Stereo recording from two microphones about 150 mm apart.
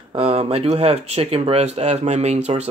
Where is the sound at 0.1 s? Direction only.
40° right (ahead or behind).